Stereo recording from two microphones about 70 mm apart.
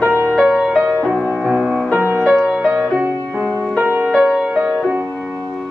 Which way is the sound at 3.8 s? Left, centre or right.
Centre.